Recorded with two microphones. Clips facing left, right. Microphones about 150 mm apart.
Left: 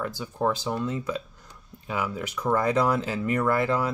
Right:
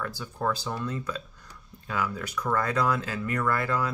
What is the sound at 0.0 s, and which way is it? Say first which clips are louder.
Speech: left 4 dB; 15° left (ahead or behind).